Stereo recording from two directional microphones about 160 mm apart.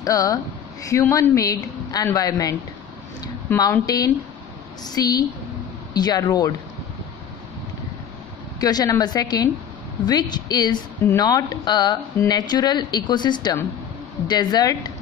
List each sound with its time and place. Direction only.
0.0 s a woman's voice: 20° left (ahead or behind)
3.5 s a woman's voice: 20° left (ahead or behind)
8.5 s a woman's voice: 25° left (ahead or behind)